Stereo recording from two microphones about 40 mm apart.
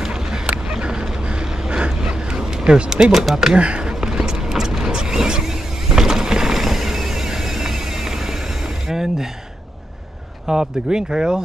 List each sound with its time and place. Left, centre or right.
0.0 s a sound: centre
2.7 s speech: right
3.1 s speech: centre
3.5 s speech: right
4.0 s vehicle: centre
8.8 s a sound: centre
10.4 s speech: centre